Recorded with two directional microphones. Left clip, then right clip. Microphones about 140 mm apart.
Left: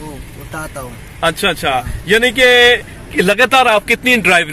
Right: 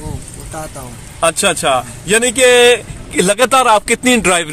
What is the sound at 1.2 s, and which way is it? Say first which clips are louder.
Speech: right 1 dB; 30° right (ahead or behind).